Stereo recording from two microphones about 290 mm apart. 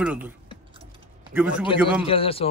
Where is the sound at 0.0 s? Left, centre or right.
Centre.